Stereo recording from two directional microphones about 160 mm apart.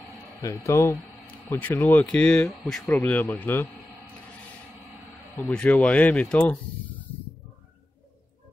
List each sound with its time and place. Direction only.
0.4 s speech: 20° left (ahead or behind)
5.3 s speech: 5° left (ahead or behind)